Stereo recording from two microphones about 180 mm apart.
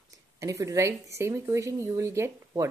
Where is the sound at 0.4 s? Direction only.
15° right (ahead or behind).